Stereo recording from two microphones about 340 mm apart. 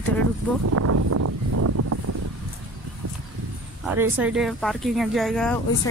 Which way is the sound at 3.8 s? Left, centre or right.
Centre.